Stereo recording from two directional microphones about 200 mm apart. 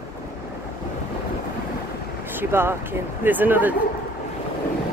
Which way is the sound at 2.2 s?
10° right (ahead or behind).